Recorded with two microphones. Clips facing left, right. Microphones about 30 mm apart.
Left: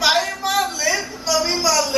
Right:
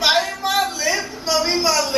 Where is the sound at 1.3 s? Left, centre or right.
Right.